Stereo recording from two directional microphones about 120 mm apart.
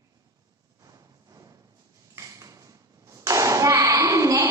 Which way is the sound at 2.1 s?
25° right (ahead or behind).